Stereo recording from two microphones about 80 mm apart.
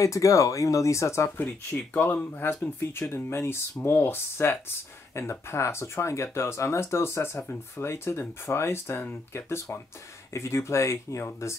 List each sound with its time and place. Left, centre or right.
0.0 s speech: left
1.4 s speech: left